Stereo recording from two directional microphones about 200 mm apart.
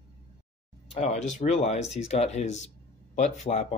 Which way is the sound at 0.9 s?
35° left (ahead or behind).